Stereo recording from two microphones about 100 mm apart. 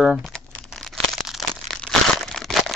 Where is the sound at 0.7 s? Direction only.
5° left (ahead or behind).